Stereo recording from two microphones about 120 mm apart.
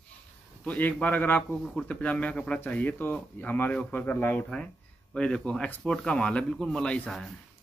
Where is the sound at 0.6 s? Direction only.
10° left (ahead or behind).